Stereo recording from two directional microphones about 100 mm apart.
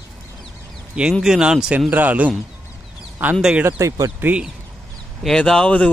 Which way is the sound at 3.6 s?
30° right (ahead or behind).